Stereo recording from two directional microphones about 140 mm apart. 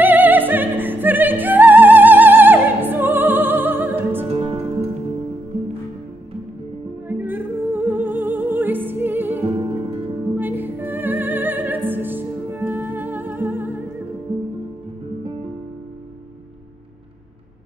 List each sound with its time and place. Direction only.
0.0 s music: 15° right (ahead or behind)
4.3 s music: 40° right (ahead or behind)
7.1 s music: 15° right (ahead or behind)